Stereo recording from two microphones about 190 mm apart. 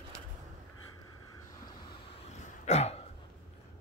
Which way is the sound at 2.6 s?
35° left (ahead or behind).